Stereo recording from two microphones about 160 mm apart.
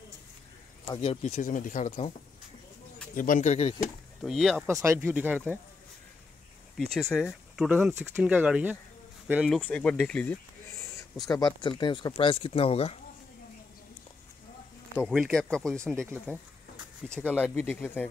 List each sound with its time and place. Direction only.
0.9 s speech: 35° left (ahead or behind)
3.2 s speech: 55° left (ahead or behind)
4.2 s speech: centre (ahead or behind)
4.6 s speech: 15° right (ahead or behind)
6.9 s speech: 5° left (ahead or behind)
9.5 s speech: 10° left (ahead or behind)
11.2 s speech: 25° left (ahead or behind)
15.0 s speech: centre (ahead or behind)
17.1 s speech: 10° left (ahead or behind)